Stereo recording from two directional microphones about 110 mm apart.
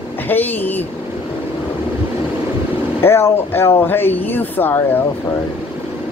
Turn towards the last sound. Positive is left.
turn(degrees=20)  # may be behind; listen again after turning